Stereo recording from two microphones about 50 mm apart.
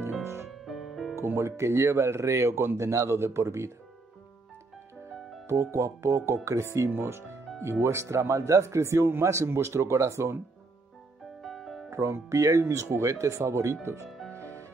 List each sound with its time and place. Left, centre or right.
0.2 s music: right
0.5 s music: centre
1.1 s speech: right
5.5 s speech: right
6.9 s speech: right
7.8 s speech: right
11.4 s music: centre
11.9 s speech: right